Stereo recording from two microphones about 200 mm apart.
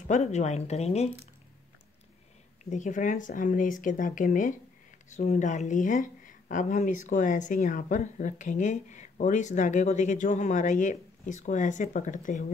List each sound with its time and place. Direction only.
0.1 s speech: 35° left (ahead or behind)
2.6 s speech: 35° left (ahead or behind)